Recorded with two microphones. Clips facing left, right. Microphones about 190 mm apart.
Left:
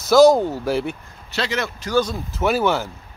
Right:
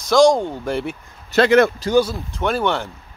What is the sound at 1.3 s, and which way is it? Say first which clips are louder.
Speech: right 11 dB; 55° right (ahead or behind).